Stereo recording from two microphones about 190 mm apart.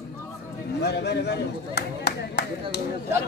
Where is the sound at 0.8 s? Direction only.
60° left (ahead or behind).